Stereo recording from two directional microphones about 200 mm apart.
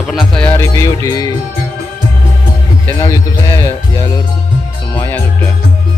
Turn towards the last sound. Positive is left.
turn(degrees=10)  # may be behind; listen again after turning